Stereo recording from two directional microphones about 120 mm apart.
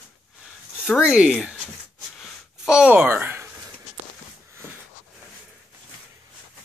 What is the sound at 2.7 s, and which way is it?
Speech, 10° right (ahead or behind).